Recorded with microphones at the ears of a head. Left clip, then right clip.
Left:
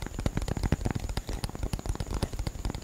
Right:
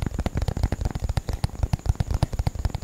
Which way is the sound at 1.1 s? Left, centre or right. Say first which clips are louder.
Right 4 dB; right.